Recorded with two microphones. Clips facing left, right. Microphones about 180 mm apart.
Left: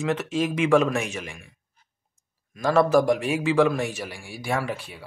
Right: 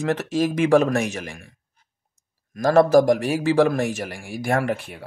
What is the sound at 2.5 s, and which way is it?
Speech, 40° right (ahead or behind).